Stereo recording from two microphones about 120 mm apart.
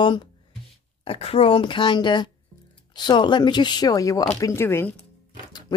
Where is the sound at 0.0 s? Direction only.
45° left (ahead or behind).